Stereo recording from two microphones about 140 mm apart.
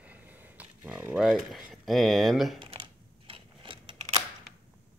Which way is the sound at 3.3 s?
40° right (ahead or behind).